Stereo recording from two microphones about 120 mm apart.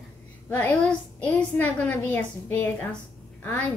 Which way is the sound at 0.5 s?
15° left (ahead or behind).